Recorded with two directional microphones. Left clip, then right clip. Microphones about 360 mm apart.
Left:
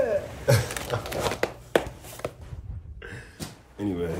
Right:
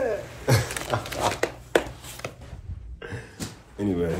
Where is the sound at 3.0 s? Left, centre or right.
Centre.